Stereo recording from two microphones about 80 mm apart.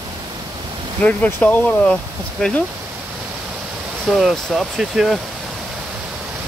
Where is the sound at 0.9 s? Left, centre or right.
Centre.